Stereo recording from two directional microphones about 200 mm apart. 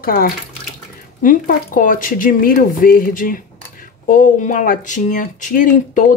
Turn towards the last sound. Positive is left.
turn(degrees=40)  # may be behind; listen again after turning